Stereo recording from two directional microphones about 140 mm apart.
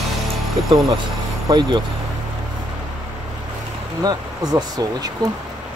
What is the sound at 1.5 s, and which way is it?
Speech, 30° right (ahead or behind).